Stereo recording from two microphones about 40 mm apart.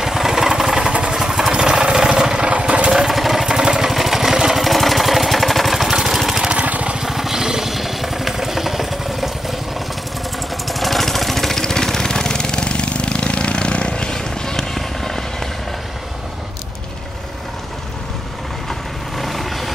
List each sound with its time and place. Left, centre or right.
0.0 s vehicle: centre
2.4 s engine: right
3.1 s vehicle: centre
3.4 s vehicle: centre
3.9 s vehicle: centre
4.6 s lawn mower: centre
6.6 s a sound: right
7.0 s vehicle: centre
10.7 s lawn mower: centre
18.7 s vehicle: centre